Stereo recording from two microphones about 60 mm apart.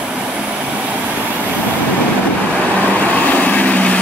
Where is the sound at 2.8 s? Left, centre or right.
Left.